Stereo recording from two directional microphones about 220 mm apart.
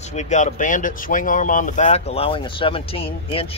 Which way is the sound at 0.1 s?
30° left (ahead or behind).